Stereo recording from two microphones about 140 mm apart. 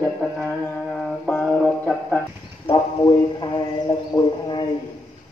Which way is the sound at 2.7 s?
40° left (ahead or behind).